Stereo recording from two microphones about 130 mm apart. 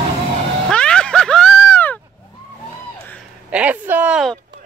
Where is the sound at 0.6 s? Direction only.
5° left (ahead or behind).